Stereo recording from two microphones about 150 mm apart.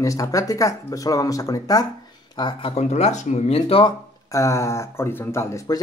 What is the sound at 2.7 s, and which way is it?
Speech, 45° left (ahead or behind).